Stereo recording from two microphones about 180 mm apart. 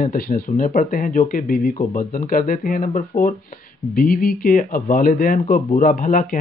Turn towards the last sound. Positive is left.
turn(degrees=45)  # may be behind; listen again after turning